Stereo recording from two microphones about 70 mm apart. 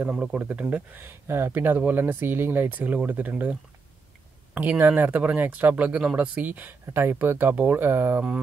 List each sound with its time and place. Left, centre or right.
0.4 s speech: right
4.6 s speech: right